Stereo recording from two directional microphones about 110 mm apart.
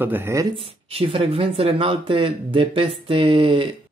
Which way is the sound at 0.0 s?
20° right (ahead or behind).